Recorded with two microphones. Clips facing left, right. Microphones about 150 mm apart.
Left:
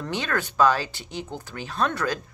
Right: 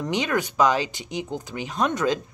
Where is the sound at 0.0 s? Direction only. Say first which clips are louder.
Right 4 dB; 15° right (ahead or behind).